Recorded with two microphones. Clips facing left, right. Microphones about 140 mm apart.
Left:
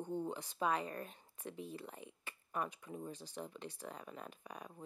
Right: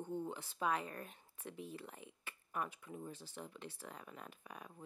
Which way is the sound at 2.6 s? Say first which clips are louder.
Left 2 dB; 15° left (ahead or behind).